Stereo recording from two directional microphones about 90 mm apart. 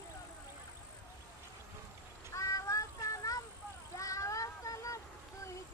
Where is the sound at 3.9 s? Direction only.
35° left (ahead or behind).